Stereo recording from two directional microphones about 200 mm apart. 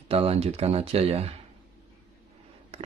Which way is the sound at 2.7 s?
30° right (ahead or behind).